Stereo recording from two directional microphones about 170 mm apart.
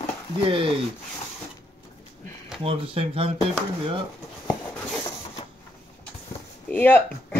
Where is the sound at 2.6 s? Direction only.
35° right (ahead or behind).